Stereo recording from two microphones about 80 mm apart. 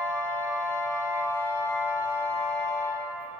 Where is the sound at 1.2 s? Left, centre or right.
Left.